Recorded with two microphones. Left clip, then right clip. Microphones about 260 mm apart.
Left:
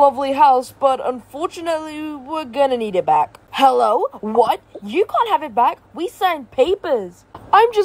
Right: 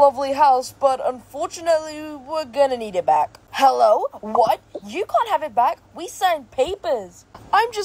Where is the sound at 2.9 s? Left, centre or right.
Left.